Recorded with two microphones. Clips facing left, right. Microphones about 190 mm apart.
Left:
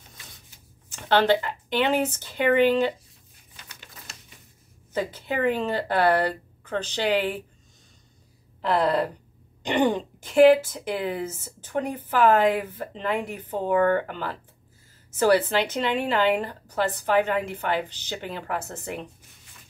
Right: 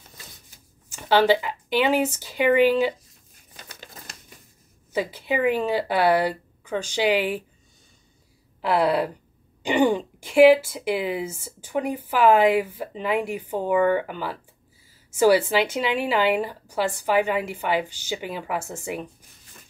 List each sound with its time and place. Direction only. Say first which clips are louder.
0.9 s speech: right 2 dB; 10° right (ahead or behind)
3.5 s crumpling: right 5 dB; 40° right (ahead or behind)
4.9 s speech: right 2 dB; 10° right (ahead or behind)
8.5 s speech: right 1 dB; 10° right (ahead or behind)